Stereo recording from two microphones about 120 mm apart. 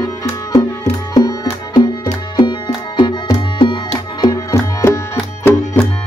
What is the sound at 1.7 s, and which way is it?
Music, 35° left (ahead or behind).